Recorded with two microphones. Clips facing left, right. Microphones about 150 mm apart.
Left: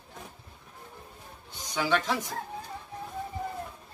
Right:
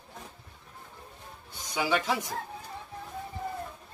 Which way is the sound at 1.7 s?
10° right (ahead or behind).